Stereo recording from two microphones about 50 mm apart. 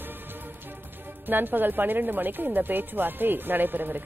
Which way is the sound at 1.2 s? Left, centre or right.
Right.